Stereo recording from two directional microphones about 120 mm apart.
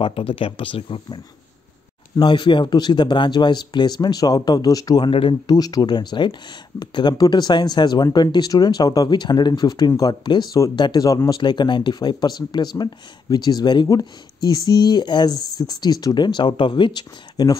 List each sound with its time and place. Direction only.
0.0 s speech: 50° left (ahead or behind); by 17.6 s 35° left (ahead or behind)